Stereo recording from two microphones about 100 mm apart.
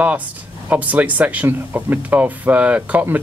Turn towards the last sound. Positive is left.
turn(degrees=-15)  # may be behind; listen again after turning